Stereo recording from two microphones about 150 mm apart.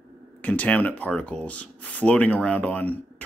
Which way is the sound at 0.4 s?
10° left (ahead or behind).